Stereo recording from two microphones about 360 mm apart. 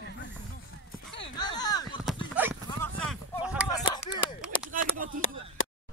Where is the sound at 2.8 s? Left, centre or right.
Centre.